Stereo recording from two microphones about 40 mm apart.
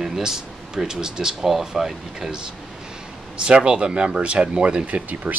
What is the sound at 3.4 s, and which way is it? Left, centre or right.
Speech, right.